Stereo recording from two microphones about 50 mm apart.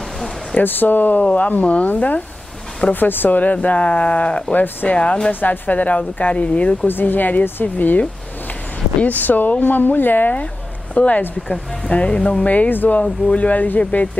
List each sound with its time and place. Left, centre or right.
0.6 s speech: left
5.3 s speech: left
6.9 s speech: left
9.0 s speech: left
11.0 s speech: left
12.4 s speech: left
13.0 s speech: left